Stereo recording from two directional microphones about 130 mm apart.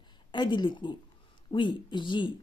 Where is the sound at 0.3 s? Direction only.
35° left (ahead or behind).